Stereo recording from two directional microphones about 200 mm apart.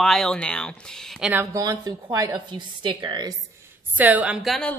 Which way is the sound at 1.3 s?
15° right (ahead or behind).